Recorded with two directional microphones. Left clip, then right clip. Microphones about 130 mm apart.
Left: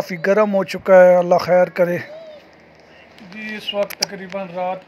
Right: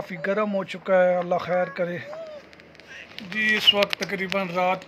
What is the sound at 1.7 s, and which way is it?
Speech, 60° left (ahead or behind).